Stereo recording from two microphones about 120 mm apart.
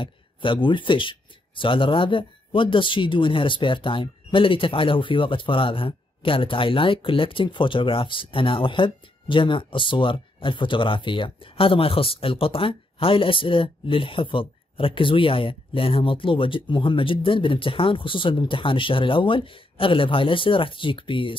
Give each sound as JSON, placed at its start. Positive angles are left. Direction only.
{"t": 0.0, "sound": "speech", "side_deg": 45}